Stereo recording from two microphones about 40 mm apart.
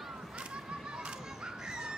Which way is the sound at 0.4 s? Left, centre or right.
Right.